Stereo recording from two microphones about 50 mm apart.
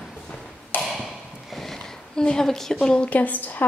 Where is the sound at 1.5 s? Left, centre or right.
Centre.